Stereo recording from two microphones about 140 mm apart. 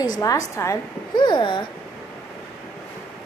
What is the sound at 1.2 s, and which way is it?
Speech, 35° left (ahead or behind).